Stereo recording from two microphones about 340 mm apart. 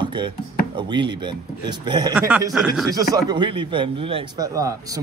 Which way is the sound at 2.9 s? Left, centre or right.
Centre.